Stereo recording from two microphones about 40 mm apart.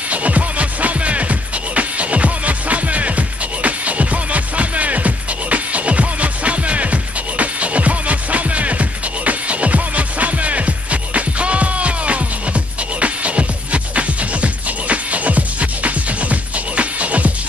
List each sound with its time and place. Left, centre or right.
0.1 s music: right